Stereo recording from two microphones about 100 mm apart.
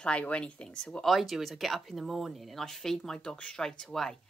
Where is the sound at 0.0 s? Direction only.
10° left (ahead or behind).